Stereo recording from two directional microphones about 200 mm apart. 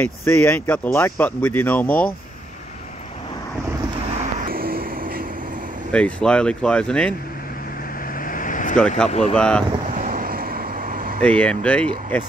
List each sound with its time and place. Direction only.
0.0 s speech: 10° left (ahead or behind)
4.5 s vehicle: 50° right (ahead or behind)
5.9 s speech: 5° left (ahead or behind)
8.3 s vehicle: 40° left (ahead or behind)
8.7 s speech: 5° left (ahead or behind)
9.9 s vehicle: 40° right (ahead or behind)
11.1 s speech: 5° left (ahead or behind)